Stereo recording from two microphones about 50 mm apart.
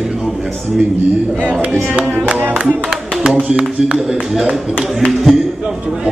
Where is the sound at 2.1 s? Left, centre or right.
Right.